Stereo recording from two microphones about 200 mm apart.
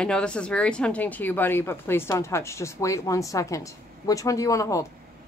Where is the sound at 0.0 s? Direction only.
5° left (ahead or behind).